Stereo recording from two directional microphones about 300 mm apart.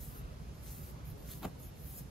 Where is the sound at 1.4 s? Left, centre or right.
Centre.